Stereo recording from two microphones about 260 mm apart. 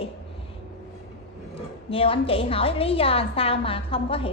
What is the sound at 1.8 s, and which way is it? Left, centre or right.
A woman's voice, left.